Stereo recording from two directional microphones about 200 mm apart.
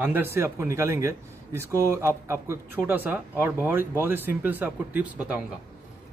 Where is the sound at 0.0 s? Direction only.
10° right (ahead or behind).